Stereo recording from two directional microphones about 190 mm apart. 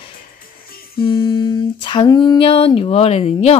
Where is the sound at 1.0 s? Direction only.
25° left (ahead or behind).